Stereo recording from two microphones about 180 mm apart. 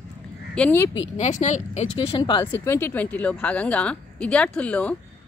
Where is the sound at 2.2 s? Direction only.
15° left (ahead or behind).